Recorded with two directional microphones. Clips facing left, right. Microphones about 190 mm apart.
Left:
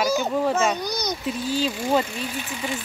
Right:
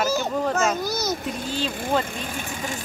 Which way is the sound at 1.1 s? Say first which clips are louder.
Left 3 dB; 50° right (ahead or behind).